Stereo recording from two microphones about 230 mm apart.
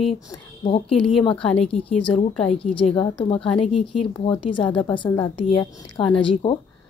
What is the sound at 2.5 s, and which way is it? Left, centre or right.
Speech, left.